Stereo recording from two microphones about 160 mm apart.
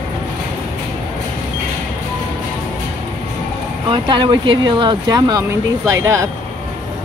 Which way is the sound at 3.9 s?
30° right (ahead or behind).